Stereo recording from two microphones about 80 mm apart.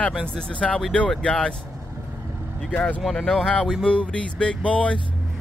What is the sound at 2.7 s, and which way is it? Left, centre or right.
Speech, centre.